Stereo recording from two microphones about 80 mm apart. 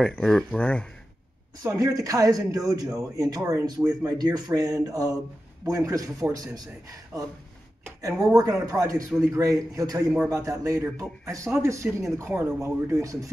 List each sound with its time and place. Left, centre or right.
0.2 s speech: centre
1.6 s speech: right